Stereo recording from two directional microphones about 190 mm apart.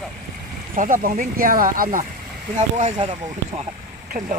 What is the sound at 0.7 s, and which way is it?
Speech, 45° right (ahead or behind).